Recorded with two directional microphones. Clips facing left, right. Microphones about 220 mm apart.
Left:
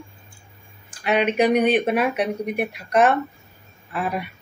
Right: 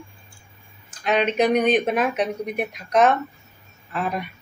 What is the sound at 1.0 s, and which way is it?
Speech, 10° left (ahead or behind).